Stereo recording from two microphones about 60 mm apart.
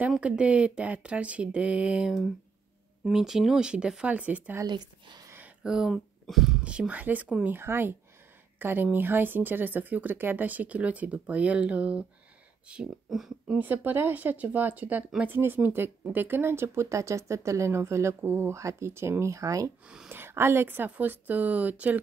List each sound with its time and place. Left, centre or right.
0.2 s speech: right
3.1 s speech: centre; by 4.6 s right
5.6 s speech: centre
6.6 s speech: centre
7.4 s a woman's voice: right; by 12.8 s centre
13.1 s speech: centre
13.6 s speech: right
20.1 s a woman's voice: right